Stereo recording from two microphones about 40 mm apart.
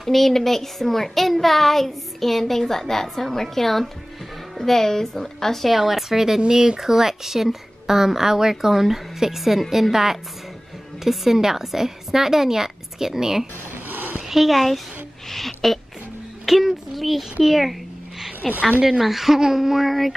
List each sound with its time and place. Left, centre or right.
0.0 s a woman's voice: centre
5.7 s speech: centre
13.8 s a sound: right
14.3 s a woman's voice: centre
18.6 s speech: right
18.9 s speech: centre